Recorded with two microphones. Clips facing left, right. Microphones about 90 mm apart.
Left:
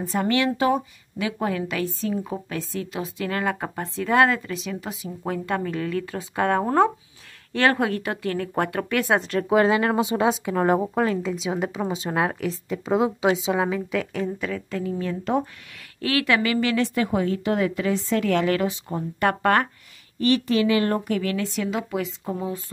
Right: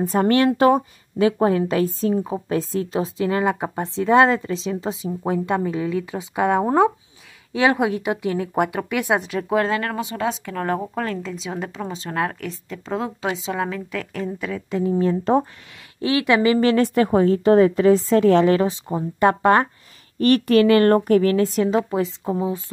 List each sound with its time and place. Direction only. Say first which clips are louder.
0.0 s a woman's voice: right 5 dB; 45° right (ahead or behind)
3.3 s a woman's voice: right 2 dB; 20° right (ahead or behind); by 14.6 s centre (ahead or behind)
14.7 s a woman's voice: right 11 dB; 25° right (ahead or behind)
16.0 s a woman's voice: right 4 dB; 20° right (ahead or behind)
16.5 s a woman's voice: right 5 dB; 40° right (ahead or behind); by 19.7 s 20° right (ahead or behind)
20.2 s speech: right 5 dB; 50° right (ahead or behind); by 22.1 s 30° right (ahead or behind)
22.2 s a woman's voice: right 5 dB; 20° right (ahead or behind)